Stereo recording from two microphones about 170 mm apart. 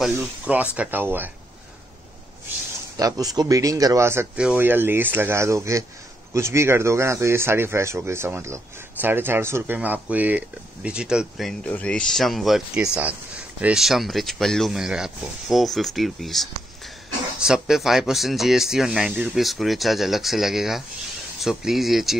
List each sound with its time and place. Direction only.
0.0 s speech: centre (ahead or behind)
3.0 s speech: 20° right (ahead or behind); by 22.1 s centre (ahead or behind)